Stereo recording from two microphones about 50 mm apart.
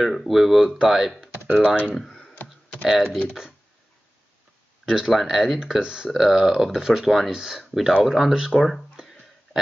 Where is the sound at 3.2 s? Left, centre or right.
Centre.